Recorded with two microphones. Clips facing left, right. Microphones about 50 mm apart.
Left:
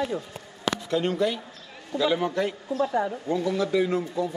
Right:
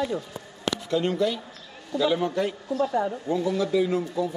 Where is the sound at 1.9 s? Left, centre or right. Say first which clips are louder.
Right 1 dB; left.